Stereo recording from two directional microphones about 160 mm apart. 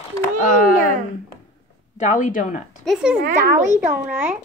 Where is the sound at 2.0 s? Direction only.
55° left (ahead or behind).